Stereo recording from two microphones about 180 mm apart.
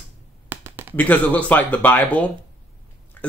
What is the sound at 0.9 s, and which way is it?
A man's voice, 10° left (ahead or behind).